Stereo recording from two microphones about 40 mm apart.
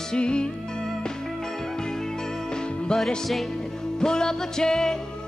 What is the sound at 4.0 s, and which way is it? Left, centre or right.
Music, centre.